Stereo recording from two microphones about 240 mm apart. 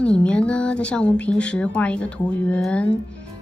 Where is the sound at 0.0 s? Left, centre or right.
Centre.